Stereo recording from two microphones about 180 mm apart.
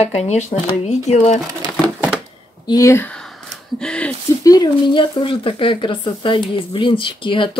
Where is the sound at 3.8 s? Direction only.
5° left (ahead or behind).